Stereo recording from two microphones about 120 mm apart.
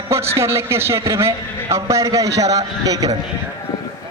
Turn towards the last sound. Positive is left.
turn(degrees=-30)  # may be behind; listen again after turning